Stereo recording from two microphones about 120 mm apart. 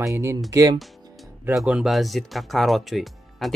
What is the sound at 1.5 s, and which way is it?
Speech, 5° right (ahead or behind).